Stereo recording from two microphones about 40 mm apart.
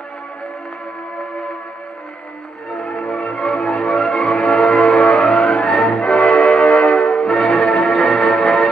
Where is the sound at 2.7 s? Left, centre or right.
Left.